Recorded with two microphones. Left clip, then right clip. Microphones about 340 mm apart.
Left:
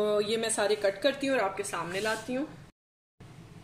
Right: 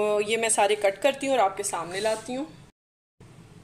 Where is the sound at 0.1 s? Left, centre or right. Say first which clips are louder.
Right 3 dB; right.